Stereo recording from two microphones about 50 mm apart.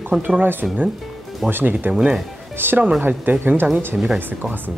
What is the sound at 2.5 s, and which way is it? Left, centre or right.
Speech, right.